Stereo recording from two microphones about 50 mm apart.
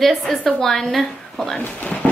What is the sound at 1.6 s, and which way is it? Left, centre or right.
Speech, left.